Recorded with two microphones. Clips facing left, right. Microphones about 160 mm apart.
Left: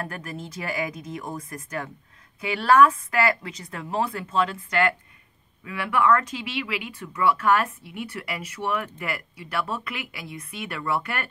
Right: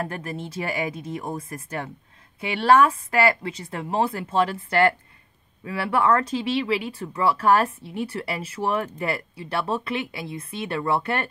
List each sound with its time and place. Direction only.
0.0 s speech: 30° right (ahead or behind)